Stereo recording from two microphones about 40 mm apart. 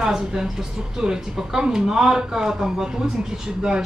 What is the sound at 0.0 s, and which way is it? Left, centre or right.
A man's voice, centre.